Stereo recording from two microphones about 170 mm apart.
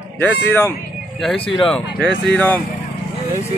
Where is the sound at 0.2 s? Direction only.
10° left (ahead or behind).